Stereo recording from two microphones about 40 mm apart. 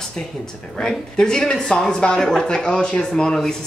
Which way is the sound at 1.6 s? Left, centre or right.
Centre.